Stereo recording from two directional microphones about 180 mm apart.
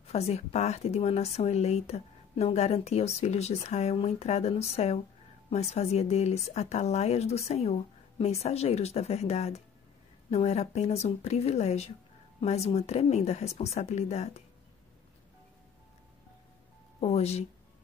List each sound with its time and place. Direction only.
0.0 s speech: 35° left (ahead or behind)
17.0 s speech: 35° left (ahead or behind)